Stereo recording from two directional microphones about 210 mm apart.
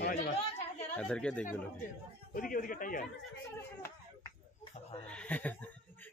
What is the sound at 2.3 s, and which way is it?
Speech, 40° left (ahead or behind).